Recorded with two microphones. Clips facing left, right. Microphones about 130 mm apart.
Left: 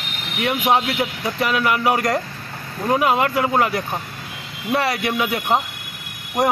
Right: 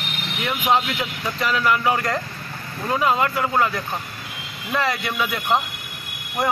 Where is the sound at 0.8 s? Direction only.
35° left (ahead or behind).